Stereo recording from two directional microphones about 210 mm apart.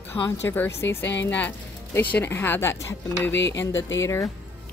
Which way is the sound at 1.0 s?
55° left (ahead or behind).